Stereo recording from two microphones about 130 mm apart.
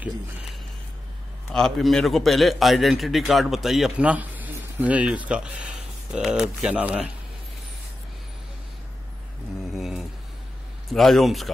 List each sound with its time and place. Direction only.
1.5 s a man's voice: centre (ahead or behind)
9.8 s a sound: centre (ahead or behind)
10.9 s a man's voice: centre (ahead or behind)